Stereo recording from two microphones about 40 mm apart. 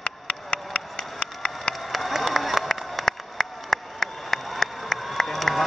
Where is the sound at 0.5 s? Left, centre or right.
Left.